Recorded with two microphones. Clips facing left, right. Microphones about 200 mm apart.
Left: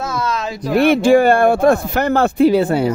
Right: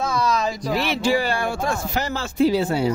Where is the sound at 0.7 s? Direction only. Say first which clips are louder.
Left 12 dB; 55° left (ahead or behind).